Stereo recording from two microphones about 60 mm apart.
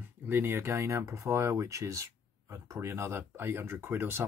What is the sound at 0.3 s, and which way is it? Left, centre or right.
Speech, right.